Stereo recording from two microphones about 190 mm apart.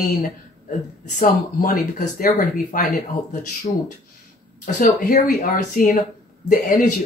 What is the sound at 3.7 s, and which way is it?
Speech, 30° left (ahead or behind).